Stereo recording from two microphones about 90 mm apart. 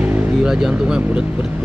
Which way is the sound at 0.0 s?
20° right (ahead or behind).